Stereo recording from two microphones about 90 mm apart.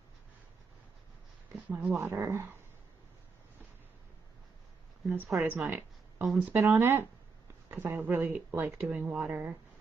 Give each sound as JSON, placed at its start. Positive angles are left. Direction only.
{"t": 1.7, "sound": "speech", "side_deg": -15}
{"t": 5.0, "sound": "a woman's voice", "side_deg": -20}
{"t": 5.7, "sound": "a sound", "side_deg": -20}
{"t": 6.4, "sound": "speech", "side_deg": -20}